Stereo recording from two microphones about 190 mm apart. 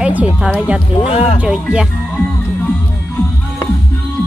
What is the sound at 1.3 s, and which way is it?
Speech, 5° right (ahead or behind).